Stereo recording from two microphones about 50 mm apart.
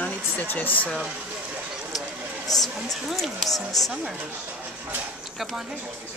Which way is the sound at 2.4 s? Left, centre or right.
Centre.